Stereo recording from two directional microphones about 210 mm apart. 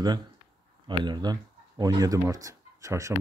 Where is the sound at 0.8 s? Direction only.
20° right (ahead or behind).